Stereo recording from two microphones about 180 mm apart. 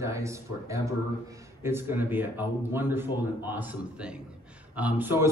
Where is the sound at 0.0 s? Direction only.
15° right (ahead or behind).